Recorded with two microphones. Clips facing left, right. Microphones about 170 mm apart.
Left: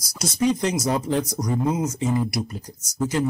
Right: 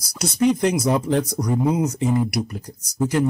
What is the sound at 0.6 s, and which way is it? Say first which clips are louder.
Speech: right 4 dB; 60° right (ahead or behind).